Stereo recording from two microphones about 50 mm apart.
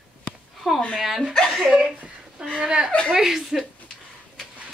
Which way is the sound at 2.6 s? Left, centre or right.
Centre.